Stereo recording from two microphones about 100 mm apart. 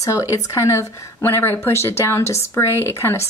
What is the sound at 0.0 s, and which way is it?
Speech, 30° left (ahead or behind).